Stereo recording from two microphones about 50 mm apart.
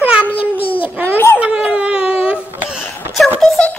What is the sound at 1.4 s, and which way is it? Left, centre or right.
Baby cry, centre.